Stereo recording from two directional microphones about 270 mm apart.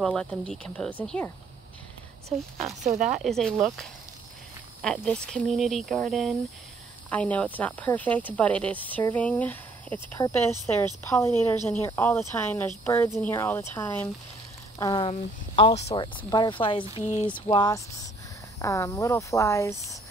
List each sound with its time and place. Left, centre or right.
0.0 s speech: centre
2.6 s speech: right
3.2 s speech: centre
4.8 s speech: centre; by 17.4 s left
17.5 s speech: centre